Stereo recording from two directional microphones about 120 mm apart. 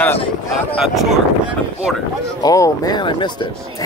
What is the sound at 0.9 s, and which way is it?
Speech, centre (ahead or behind).